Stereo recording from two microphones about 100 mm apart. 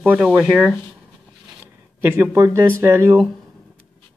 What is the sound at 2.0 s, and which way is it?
Speech, 30° right (ahead or behind).